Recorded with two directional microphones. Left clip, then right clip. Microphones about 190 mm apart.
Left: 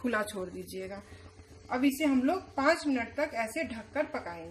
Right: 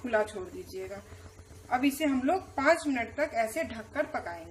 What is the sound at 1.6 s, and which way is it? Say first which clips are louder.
A woman's voice: right 1 dB; 35° left (ahead or behind).